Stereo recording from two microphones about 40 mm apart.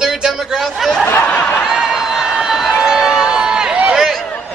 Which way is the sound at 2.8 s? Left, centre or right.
Centre.